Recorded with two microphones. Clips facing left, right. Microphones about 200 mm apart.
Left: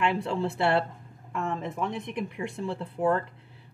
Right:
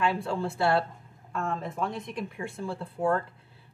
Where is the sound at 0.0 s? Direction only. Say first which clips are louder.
Left 1 dB; 25° left (ahead or behind).